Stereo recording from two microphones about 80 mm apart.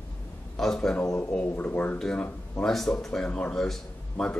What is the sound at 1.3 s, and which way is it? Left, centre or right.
Speech, centre.